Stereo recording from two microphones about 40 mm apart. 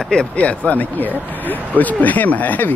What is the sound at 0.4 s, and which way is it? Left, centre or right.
Speech, left.